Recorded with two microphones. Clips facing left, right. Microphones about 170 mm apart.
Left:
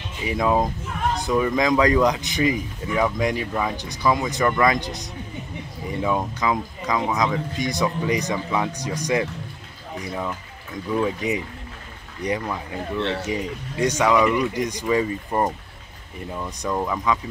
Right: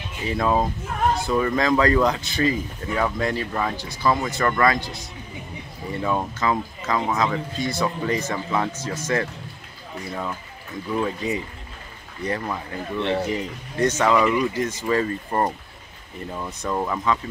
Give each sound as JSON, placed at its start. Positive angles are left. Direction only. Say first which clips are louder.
{"t": 0.3, "sound": "speech", "louder": "left 1 dB", "side_deg": 15}
{"t": 12.9, "sound": "speech", "louder": "right 2 dB", "side_deg": -15}
{"t": 13.3, "sound": "speech", "louder": "left 1 dB", "side_deg": 10}
{"t": 14.1, "sound": "speech", "louder": "left 2 dB", "side_deg": -5}
{"t": 14.4, "sound": "speech", "louder": "even", "side_deg": 15}
{"t": 16.3, "sound": "speech", "louder": "left 1 dB", "side_deg": -5}